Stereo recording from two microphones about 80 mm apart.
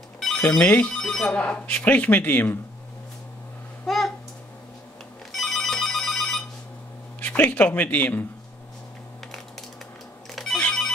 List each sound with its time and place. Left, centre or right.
0.2 s ringtone: centre
0.7 s speech: left
0.9 s speech: centre
1.3 s speech: centre
3.8 s a sound: centre
5.3 s ringtone: centre
7.2 s speech: centre
10.3 s ringtone: centre